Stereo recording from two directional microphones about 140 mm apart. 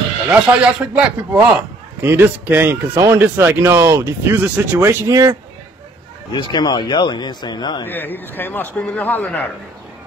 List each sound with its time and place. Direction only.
0.3 s a man's voice: 10° right (ahead or behind)
6.3 s speech: 35° left (ahead or behind)
7.8 s a man's voice: 15° left (ahead or behind)